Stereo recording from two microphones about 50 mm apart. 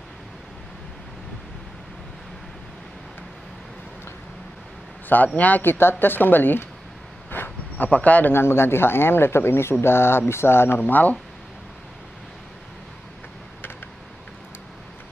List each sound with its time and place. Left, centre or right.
5.1 s speech: left
7.2 s a sound: left
8.3 s speech: left